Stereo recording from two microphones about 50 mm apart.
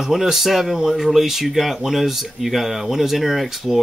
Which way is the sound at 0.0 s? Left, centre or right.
Centre.